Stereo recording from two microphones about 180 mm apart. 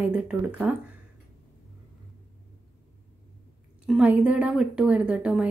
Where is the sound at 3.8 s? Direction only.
5° right (ahead or behind).